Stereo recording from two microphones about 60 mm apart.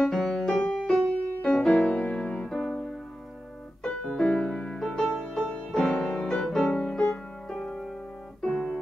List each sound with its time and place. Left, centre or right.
0.0 s music: centre
3.8 s piano: centre
4.2 s music: centre
8.4 s piano: centre